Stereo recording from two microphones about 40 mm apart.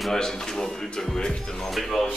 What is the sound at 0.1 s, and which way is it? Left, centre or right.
A man's voice, centre.